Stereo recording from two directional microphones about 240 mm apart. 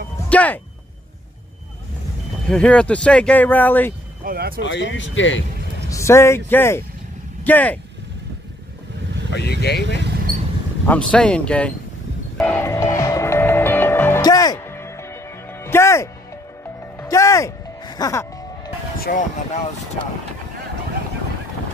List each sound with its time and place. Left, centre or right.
0.3 s a sound: centre
2.4 s speech: centre
4.2 s speech: right
4.6 s speech: left
5.9 s speech: centre
9.3 s speech: left
10.9 s speech: centre
12.4 s music: centre
19.0 s speech: left